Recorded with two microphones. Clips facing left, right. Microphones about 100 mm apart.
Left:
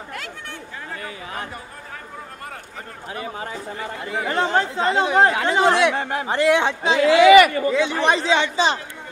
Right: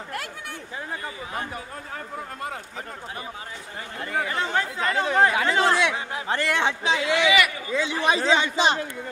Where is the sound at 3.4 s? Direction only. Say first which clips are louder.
Left 7 dB; 65° left (ahead or behind).